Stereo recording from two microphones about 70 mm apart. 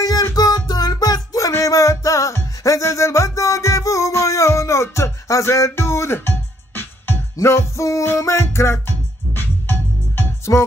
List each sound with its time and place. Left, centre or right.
0.0 s music: left
1.6 s music: left